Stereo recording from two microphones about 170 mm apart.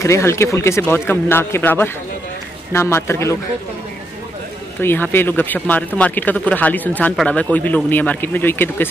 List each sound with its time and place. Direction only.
0.0 s speech: 15° left (ahead or behind)
4.8 s speech: 10° left (ahead or behind)